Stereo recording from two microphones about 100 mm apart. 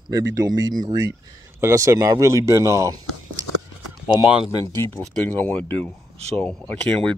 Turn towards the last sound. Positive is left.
turn(degrees=15)  # may be behind; listen again after turning